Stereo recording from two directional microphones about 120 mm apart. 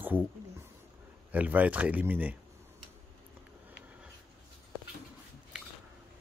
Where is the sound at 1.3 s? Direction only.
10° right (ahead or behind).